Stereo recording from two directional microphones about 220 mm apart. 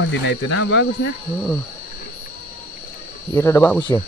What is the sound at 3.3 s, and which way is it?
Speech, 10° left (ahead or behind).